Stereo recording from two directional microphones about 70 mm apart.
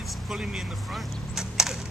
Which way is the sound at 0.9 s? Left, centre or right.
Centre.